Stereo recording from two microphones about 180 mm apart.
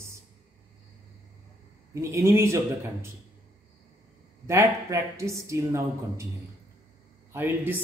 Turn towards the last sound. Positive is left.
turn(degrees=-10)  # may be behind; listen again after turning